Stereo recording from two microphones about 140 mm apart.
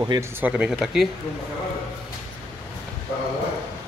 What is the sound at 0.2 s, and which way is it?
Speech, 10° right (ahead or behind).